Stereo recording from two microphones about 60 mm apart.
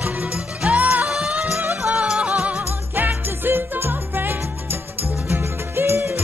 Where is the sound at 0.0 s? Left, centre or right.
Right.